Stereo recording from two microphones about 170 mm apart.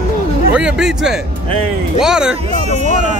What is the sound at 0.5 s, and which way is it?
Speech, 5° right (ahead or behind).